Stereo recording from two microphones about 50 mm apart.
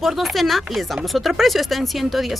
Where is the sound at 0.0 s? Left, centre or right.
Centre.